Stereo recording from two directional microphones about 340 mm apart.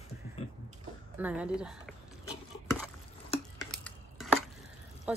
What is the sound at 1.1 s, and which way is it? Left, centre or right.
Speech, centre.